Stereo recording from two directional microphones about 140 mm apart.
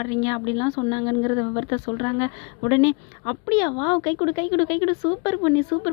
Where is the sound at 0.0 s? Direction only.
30° left (ahead or behind).